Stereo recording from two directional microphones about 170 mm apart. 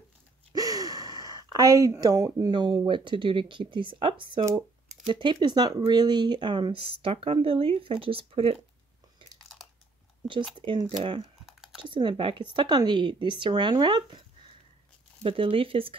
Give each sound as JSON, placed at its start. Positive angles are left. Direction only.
{"t": 0.5, "sound": "speech", "side_deg": -20}
{"t": 10.6, "sound": "speech", "side_deg": -30}
{"t": 11.4, "sound": "computer keyboard", "side_deg": -5}
{"t": 11.8, "sound": "speech", "side_deg": -30}
{"t": 15.2, "sound": "speech", "side_deg": -30}